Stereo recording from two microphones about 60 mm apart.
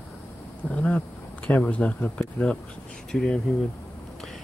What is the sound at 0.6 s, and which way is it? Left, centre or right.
Speech, left.